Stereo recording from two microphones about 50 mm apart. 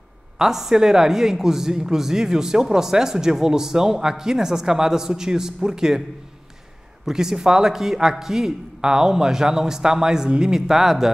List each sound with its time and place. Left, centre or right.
0.4 s speech: centre
7.1 s speech: centre
10.7 s speech: centre